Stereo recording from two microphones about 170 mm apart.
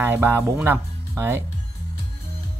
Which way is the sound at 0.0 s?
15° right (ahead or behind).